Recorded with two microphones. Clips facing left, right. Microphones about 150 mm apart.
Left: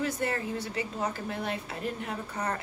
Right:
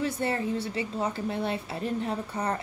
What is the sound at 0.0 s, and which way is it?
A woman's voice, 25° right (ahead or behind).